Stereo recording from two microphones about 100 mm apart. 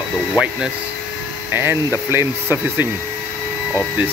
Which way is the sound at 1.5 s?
20° right (ahead or behind).